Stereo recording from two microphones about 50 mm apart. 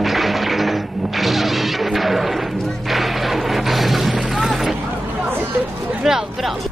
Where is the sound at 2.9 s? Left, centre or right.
Centre.